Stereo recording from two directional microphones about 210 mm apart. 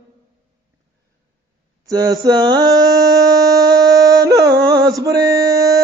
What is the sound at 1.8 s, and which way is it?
Mantra, 20° right (ahead or behind).